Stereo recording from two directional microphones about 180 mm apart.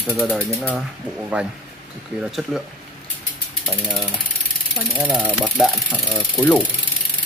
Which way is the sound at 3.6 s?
Centre (ahead or behind).